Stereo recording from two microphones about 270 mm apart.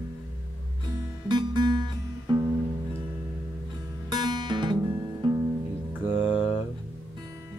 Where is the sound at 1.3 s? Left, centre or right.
Centre.